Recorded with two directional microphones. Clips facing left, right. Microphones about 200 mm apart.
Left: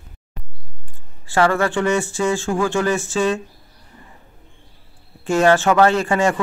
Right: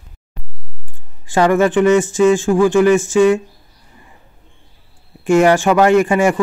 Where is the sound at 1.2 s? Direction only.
15° right (ahead or behind).